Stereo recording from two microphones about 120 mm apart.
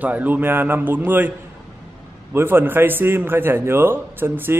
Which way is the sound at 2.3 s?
20° right (ahead or behind).